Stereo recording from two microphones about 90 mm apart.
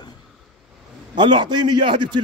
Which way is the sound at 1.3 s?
60° right (ahead or behind).